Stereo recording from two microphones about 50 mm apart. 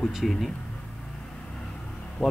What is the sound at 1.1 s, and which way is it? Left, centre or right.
Vehicle, centre.